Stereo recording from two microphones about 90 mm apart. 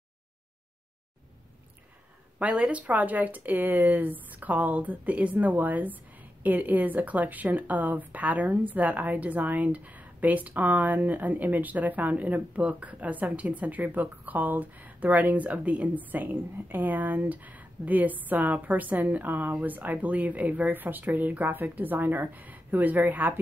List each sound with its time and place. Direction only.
2.3 s speech: 15° right (ahead or behind)